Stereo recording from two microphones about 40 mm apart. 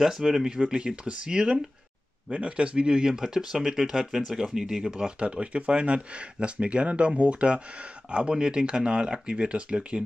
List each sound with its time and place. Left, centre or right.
0.0 s speech: centre; by 10.0 s right